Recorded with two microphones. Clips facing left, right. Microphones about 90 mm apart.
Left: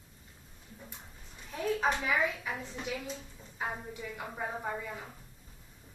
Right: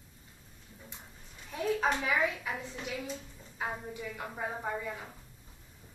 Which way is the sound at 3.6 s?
Centre (ahead or behind).